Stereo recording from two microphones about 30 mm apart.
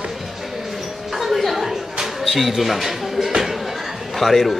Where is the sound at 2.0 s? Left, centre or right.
Centre.